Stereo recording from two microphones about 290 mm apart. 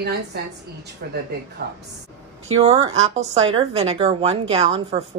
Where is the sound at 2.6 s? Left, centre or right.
Centre.